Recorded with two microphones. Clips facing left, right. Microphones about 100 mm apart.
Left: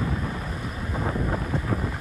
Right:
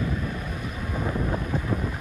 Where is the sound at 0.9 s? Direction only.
5° left (ahead or behind).